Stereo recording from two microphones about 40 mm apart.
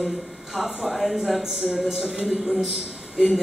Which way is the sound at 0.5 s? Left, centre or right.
Centre.